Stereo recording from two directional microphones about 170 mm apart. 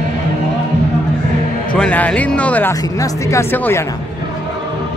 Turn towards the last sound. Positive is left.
turn(degrees=15)  # may be behind; listen again after turning